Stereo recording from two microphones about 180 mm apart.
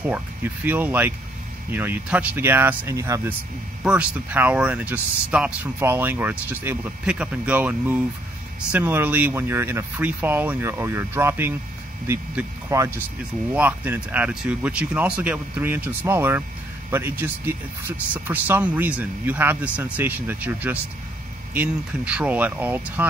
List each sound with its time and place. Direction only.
0.0 s speech: 10° right (ahead or behind)